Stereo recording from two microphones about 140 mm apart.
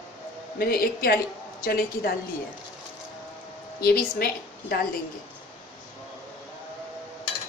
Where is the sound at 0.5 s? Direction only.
90° left.